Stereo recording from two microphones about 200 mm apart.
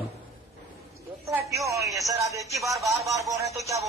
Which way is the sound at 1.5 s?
15° right (ahead or behind).